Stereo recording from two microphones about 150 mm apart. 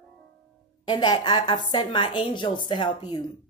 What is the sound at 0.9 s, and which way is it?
A woman's voice, 30° left (ahead or behind).